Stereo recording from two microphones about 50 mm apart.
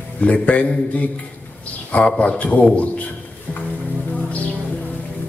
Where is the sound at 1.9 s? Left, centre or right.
Left.